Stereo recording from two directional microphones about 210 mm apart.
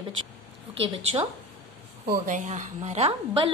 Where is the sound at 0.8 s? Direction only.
30° right (ahead or behind).